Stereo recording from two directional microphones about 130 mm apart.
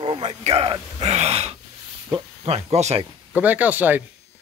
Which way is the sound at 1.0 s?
55° right (ahead or behind).